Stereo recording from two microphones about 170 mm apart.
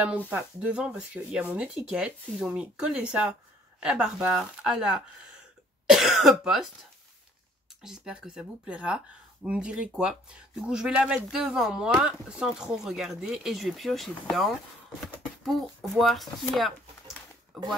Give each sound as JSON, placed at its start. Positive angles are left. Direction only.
{"t": 0.3, "sound": "speech", "side_deg": -5}